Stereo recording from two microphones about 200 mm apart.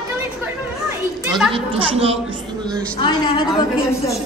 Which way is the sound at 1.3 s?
Centre (ahead or behind).